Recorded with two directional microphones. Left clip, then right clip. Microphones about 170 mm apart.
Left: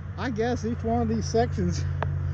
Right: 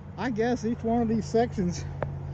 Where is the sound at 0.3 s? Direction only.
35° left (ahead or behind).